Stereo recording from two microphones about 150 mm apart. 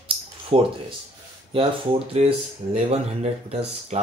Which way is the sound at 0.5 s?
45° right (ahead or behind).